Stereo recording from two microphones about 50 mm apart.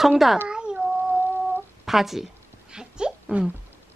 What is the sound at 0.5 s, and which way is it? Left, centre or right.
Cat, centre.